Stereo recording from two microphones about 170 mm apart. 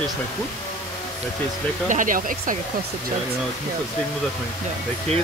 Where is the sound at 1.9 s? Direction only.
50° right (ahead or behind).